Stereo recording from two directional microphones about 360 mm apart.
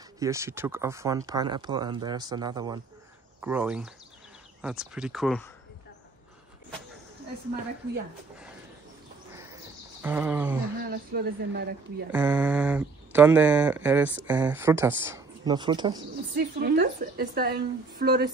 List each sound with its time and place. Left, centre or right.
0.2 s speech: centre
10.0 s speech: centre
10.8 s a woman's voice: right
12.1 s speech: centre
16.3 s a woman's voice: right